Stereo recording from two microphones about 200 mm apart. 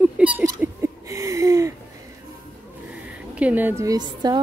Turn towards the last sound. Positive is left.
turn(degrees=-20)  # may be behind; listen again after turning